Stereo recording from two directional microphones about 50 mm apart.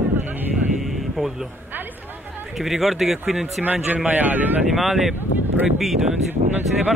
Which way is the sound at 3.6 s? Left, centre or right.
Right.